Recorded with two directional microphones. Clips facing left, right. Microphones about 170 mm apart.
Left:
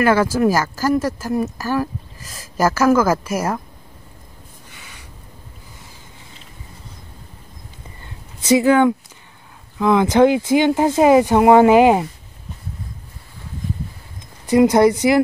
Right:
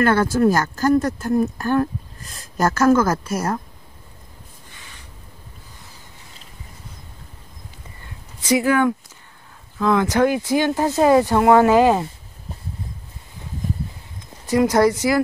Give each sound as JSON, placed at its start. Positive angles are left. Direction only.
{"t": 0.0, "sound": "speech", "side_deg": 10}
{"t": 8.4, "sound": "speech", "side_deg": 25}
{"t": 14.5, "sound": "speech", "side_deg": 20}